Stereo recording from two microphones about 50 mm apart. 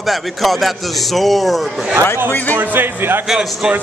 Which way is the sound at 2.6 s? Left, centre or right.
Right.